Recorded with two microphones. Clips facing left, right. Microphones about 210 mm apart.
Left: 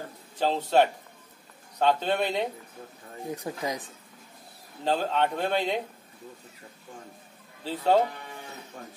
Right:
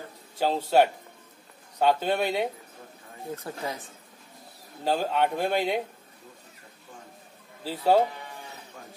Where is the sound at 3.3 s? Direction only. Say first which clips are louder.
Left 2 dB; 15° left (ahead or behind).